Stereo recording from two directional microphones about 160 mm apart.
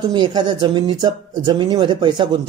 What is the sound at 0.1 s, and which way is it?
Speech, 25° right (ahead or behind).